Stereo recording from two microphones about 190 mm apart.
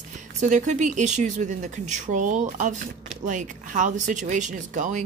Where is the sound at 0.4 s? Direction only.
40° right (ahead or behind).